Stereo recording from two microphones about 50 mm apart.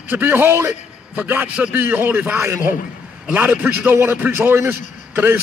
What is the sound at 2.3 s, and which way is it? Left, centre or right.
Speech, right.